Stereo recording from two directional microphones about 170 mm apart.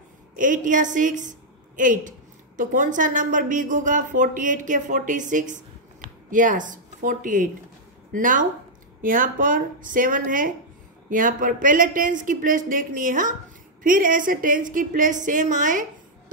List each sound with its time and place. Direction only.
0.4 s a woman's voice: 50° right (ahead or behind)